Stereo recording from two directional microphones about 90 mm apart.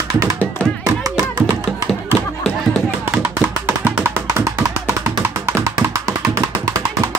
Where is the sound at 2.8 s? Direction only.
15° right (ahead or behind); by 6.8 s 40° right (ahead or behind).